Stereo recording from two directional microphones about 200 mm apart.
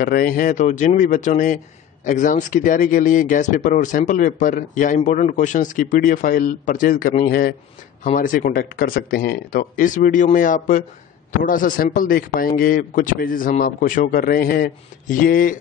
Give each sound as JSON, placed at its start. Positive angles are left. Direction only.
{"t": 0.0, "sound": "a man's voice", "side_deg": 45}